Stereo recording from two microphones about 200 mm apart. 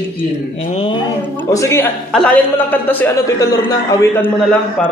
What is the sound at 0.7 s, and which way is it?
Speech, 25° left (ahead or behind).